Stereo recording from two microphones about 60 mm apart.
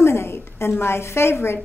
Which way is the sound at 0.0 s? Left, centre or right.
Left.